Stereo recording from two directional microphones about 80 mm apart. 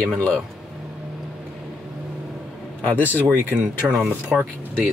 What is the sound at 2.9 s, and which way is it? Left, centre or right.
Speech, left.